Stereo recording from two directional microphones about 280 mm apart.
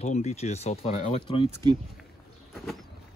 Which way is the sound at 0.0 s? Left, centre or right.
Left.